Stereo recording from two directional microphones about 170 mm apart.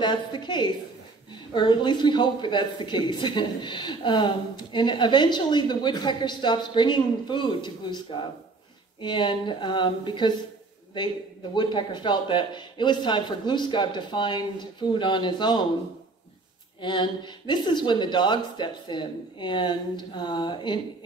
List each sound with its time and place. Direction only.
0.0 s speech: 25° left (ahead or behind)
11.5 s speech: 25° left (ahead or behind)
16.8 s speech: 25° left (ahead or behind)